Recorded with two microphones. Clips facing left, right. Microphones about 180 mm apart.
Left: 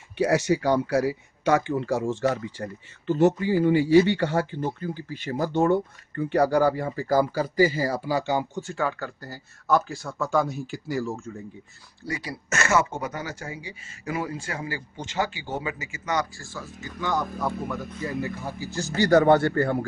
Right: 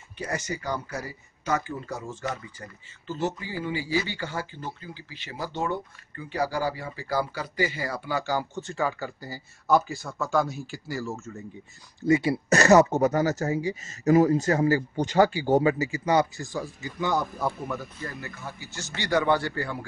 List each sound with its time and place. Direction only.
0.2 s speech: 70° left (ahead or behind); by 8.5 s 25° left (ahead or behind)
8.5 s speech: 5° left (ahead or behind)
12.0 s speech: 25° right (ahead or behind); by 17.7 s 10° right (ahead or behind)
18.2 s speech: 35° left (ahead or behind); by 19.8 s 50° left (ahead or behind)